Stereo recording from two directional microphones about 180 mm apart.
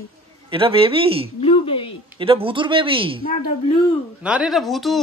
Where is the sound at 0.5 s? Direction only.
30° right (ahead or behind).